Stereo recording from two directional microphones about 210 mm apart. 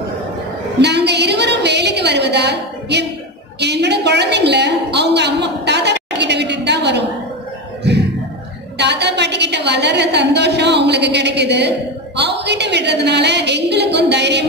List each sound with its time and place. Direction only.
0.7 s a woman's voice: 55° right (ahead or behind)
3.5 s a sound: 55° right (ahead or behind)
8.7 s a woman's voice: 55° right (ahead or behind)